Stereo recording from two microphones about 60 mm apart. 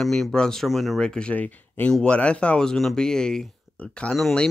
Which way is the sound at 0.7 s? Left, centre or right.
Centre.